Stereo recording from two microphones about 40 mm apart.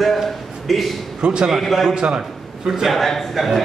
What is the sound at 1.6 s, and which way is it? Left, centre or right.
Speech, centre.